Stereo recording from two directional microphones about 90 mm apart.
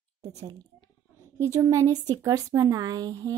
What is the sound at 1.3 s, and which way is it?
Speech, 35° right (ahead or behind).